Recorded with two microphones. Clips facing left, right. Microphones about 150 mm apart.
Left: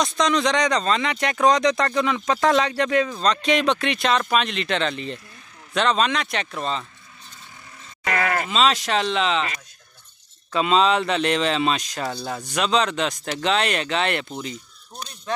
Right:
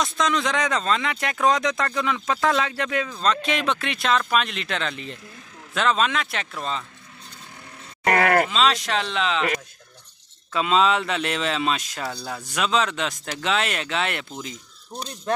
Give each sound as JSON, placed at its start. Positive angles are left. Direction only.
{"t": 0.0, "sound": "speech", "side_deg": 0}
{"t": 8.0, "sound": "groan", "side_deg": -55}
{"t": 8.5, "sound": "speech", "side_deg": 0}
{"t": 10.5, "sound": "speech", "side_deg": 0}